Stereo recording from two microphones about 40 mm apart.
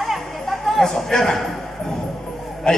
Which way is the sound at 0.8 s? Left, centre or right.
Centre.